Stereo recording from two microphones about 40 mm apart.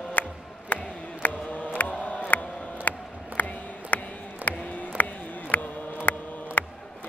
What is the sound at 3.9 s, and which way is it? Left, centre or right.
Music, left.